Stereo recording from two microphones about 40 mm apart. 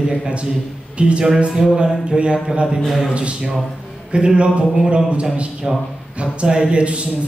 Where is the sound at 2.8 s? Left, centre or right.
Centre.